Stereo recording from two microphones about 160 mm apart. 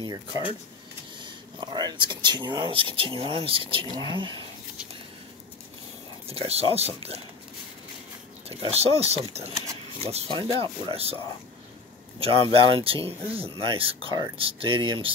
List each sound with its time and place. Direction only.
0.0 s speech: 25° right (ahead or behind)
6.2 s speech: 40° right (ahead or behind)
8.5 s speech: 40° right (ahead or behind)
12.2 s speech: 35° right (ahead or behind)